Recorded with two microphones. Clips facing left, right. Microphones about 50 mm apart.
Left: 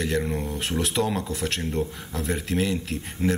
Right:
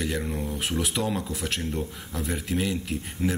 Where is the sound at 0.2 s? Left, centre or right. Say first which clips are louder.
Left 3 dB; centre.